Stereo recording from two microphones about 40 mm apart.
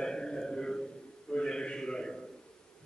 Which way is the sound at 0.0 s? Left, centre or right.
Centre.